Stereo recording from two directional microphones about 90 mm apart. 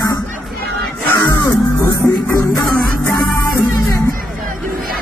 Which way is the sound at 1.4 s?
35° left (ahead or behind).